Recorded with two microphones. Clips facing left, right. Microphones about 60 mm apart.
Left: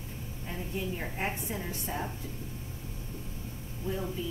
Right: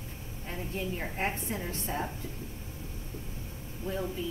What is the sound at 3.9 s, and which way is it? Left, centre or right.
Speech, right.